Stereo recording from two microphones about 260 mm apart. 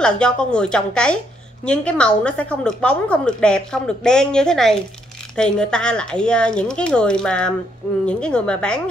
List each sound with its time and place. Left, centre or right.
0.0 s a woman's voice: centre